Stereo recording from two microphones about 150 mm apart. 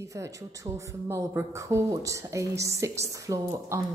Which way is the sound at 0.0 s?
20° right (ahead or behind).